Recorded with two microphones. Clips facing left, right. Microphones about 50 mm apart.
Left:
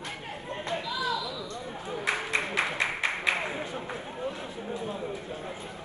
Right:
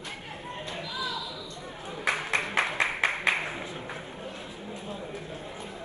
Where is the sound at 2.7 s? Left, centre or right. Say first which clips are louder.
Right 2 dB; right.